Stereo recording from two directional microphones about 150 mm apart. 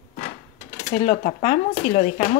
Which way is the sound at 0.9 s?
55° left (ahead or behind).